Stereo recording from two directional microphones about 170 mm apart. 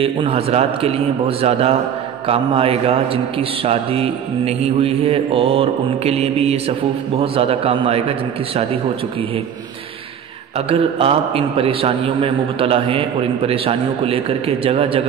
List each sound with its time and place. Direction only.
0.0 s a man's voice: 30° right (ahead or behind)
10.7 s a man's voice: 35° right (ahead or behind)